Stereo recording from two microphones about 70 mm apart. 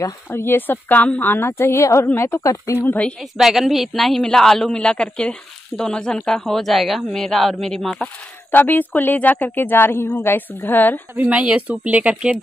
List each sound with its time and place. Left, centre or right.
0.3 s speech: left
1.5 s a woman's voice: left
3.2 s speech: centre
8.5 s speech: left
11.1 s speech: centre